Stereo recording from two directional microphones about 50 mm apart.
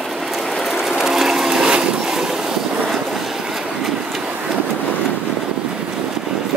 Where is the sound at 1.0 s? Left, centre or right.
Centre.